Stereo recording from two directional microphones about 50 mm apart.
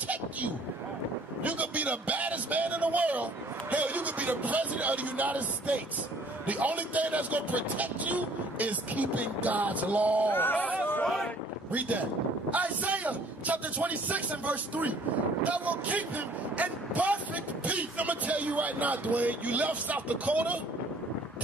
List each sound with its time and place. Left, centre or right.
1.4 s a sound: right
3.7 s a man's voice: right
10.3 s speech: left
11.7 s speech: right